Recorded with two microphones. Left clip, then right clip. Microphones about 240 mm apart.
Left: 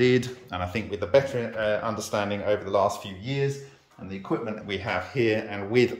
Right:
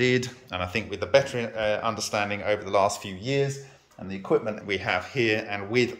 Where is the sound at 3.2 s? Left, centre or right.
Right.